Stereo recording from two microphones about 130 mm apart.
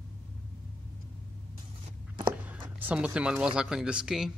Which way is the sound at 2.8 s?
10° right (ahead or behind).